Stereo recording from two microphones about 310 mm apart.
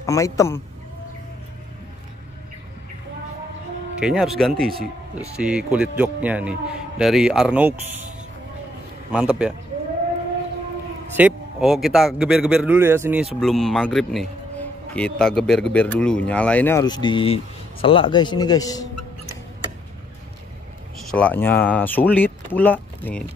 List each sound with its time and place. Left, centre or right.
0.0 s a man's voice: centre
4.0 s speech: centre
9.1 s speech: centre
11.1 s a man's voice: centre
21.1 s speech: centre